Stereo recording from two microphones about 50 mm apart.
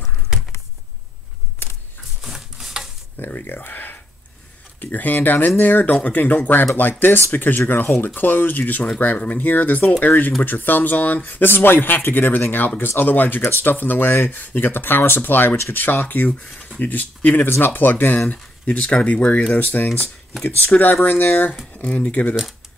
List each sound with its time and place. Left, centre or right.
1.6 s a sound: left
2.2 s a sound: centre
3.2 s speech: left
17.5 s speech: left
18.3 s speech: left
19.5 s speech: left
22.3 s speech: centre